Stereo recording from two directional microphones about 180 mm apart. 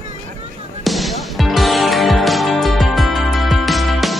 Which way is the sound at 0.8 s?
Centre (ahead or behind).